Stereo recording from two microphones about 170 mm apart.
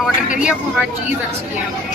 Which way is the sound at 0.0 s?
5° right (ahead or behind).